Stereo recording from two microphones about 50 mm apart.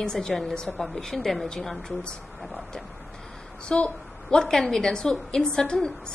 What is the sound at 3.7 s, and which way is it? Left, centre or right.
Speech, left.